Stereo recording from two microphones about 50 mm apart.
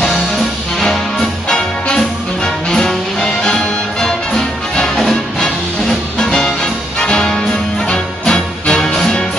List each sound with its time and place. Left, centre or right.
2.4 s music: centre
6.1 s music: centre